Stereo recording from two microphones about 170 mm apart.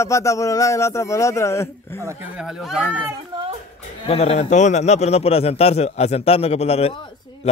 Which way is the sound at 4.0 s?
35° left (ahead or behind).